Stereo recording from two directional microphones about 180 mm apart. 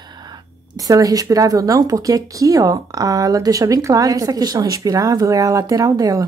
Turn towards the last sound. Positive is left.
turn(degrees=-20)  # may be behind; listen again after turning